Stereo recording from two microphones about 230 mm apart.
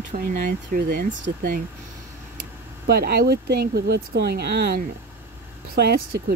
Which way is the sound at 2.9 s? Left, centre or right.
Right.